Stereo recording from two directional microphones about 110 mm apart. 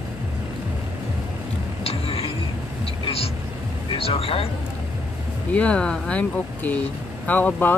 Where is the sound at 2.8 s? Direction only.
65° left (ahead or behind).